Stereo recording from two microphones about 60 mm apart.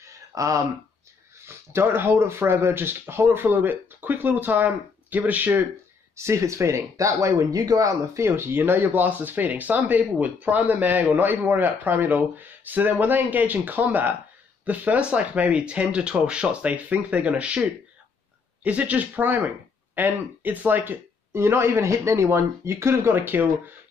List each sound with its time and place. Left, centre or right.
0.0 s a sound: right
1.4 s speech: right
6.1 s speech: right
8.2 s speech: right
21.3 s speech: right
23.1 s speech: right